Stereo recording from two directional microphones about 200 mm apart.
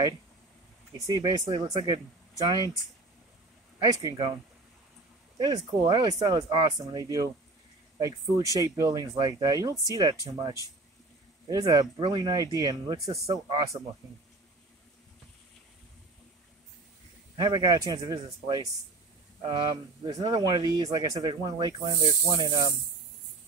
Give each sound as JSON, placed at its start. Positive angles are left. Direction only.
{"t": 0.9, "sound": "speech", "side_deg": -20}
{"t": 3.8, "sound": "speech", "side_deg": -20}
{"t": 5.4, "sound": "speech", "side_deg": -20}
{"t": 17.4, "sound": "speech", "side_deg": -20}